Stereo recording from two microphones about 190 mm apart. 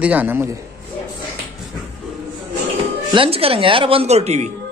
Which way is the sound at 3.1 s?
30° right (ahead or behind).